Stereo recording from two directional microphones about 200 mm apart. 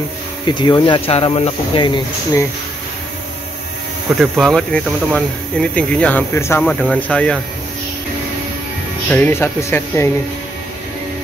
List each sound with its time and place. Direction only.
0.5 s speech: 20° left (ahead or behind)
4.2 s speech: centre (ahead or behind)
9.1 s speech: 10° left (ahead or behind)